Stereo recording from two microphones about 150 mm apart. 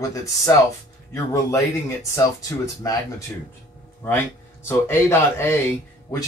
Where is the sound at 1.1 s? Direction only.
20° left (ahead or behind).